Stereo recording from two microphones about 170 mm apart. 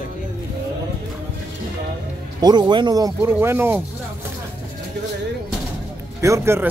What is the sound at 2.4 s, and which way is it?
Speech, 25° right (ahead or behind).